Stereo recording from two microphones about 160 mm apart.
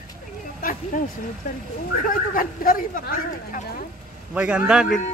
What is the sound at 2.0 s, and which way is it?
Speech, 60° left (ahead or behind).